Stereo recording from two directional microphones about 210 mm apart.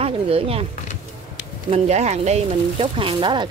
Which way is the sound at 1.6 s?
30° right (ahead or behind).